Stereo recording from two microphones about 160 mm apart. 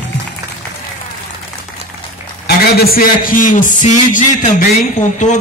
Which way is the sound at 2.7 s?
70° left (ahead or behind).